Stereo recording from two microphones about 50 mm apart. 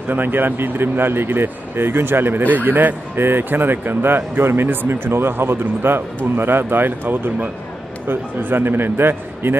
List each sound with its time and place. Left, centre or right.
0.1 s speech: right